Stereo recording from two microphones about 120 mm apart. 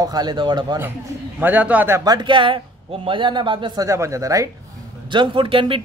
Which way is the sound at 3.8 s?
25° right (ahead or behind).